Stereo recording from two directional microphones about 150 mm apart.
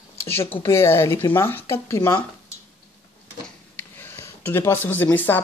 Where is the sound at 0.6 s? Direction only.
15° left (ahead or behind).